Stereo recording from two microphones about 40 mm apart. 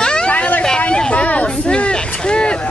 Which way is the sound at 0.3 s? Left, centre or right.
Left.